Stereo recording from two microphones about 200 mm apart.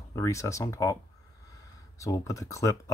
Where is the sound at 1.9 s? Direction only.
15° left (ahead or behind).